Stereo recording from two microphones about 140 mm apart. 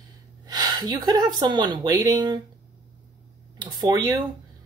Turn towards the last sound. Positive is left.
turn(degrees=-30)  # may be behind; listen again after turning